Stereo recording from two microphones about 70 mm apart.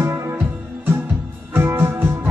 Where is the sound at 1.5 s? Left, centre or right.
Right.